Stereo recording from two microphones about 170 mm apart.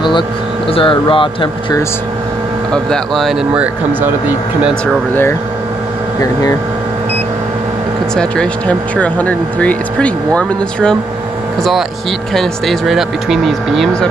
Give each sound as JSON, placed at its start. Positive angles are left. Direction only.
{"t": 0.7, "sound": "speech", "side_deg": 30}
{"t": 2.7, "sound": "speech", "side_deg": 5}
{"t": 8.2, "sound": "speech", "side_deg": 5}
{"t": 12.4, "sound": "speech", "side_deg": 0}